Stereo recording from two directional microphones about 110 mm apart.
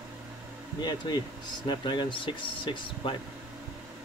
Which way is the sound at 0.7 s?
40° left (ahead or behind).